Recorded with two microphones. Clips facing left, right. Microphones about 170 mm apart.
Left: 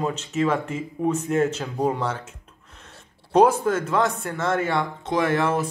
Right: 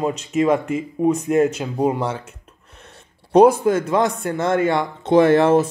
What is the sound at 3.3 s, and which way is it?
A man's voice, 15° right (ahead or behind).